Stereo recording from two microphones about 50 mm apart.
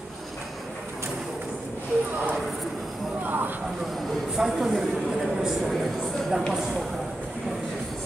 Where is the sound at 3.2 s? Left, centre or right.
Right.